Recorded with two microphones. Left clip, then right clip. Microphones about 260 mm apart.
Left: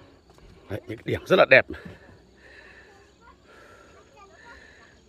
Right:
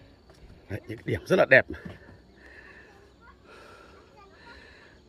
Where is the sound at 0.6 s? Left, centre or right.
Centre.